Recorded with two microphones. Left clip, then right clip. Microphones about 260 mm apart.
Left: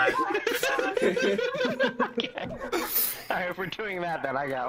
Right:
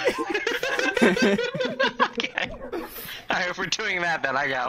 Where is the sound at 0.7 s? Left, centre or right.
Right.